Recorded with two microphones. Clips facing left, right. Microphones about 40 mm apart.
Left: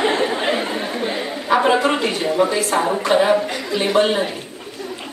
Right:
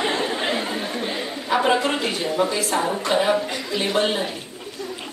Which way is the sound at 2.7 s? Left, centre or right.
Centre.